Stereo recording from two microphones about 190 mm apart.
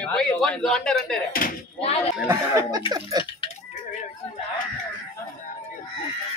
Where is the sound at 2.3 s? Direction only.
20° right (ahead or behind).